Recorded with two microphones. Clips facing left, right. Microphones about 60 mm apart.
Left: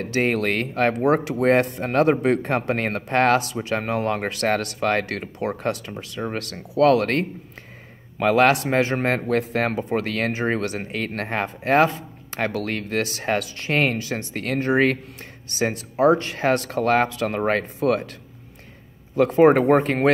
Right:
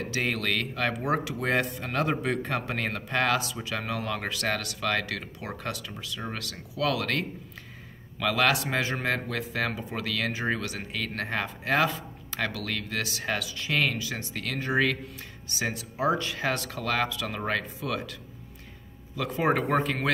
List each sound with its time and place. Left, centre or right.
0.0 s speech: left
19.1 s speech: left